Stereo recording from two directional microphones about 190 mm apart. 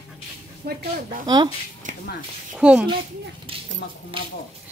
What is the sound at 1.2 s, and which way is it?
Speech, 20° right (ahead or behind).